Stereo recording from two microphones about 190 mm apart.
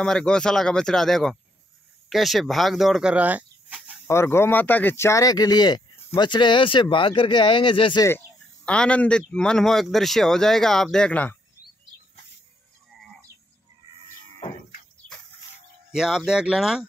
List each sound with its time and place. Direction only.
0.0 s a man's voice: 5° left (ahead or behind)
4.1 s speech: 15° left (ahead or behind)
8.6 s a man's voice: 5° left (ahead or behind)
15.9 s a man's voice: centre (ahead or behind)